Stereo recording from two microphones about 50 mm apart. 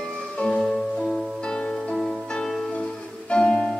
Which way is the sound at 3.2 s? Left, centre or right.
Centre.